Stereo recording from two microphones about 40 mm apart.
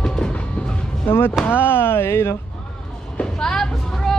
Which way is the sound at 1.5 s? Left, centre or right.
Left.